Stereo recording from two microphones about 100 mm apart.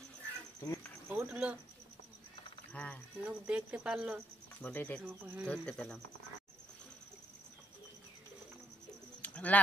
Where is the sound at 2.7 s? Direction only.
15° left (ahead or behind).